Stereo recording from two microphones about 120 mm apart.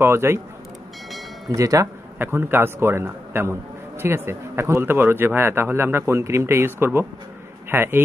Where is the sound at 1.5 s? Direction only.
25° right (ahead or behind).